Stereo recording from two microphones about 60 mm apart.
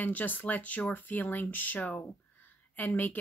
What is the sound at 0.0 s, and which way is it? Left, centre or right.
Speech, left.